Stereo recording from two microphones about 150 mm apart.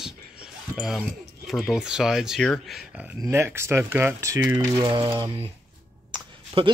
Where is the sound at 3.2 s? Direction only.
15° right (ahead or behind); by 5.5 s 35° right (ahead or behind).